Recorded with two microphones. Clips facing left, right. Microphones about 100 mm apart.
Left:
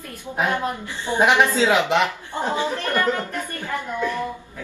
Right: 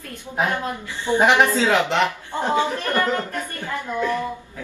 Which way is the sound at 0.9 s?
15° left (ahead or behind).